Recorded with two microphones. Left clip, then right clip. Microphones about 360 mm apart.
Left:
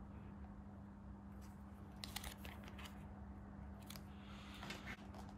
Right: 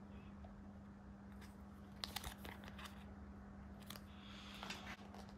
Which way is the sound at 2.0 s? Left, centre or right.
Centre.